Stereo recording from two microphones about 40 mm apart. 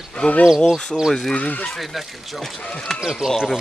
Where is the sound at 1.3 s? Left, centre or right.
Left.